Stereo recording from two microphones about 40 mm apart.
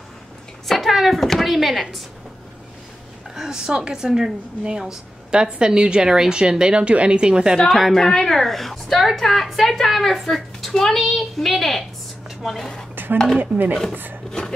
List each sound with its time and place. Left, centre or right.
0.7 s a woman's voice: centre
3.3 s a woman's voice: centre
7.5 s a woman's voice: centre
12.9 s a sound: right
13.4 s speech: right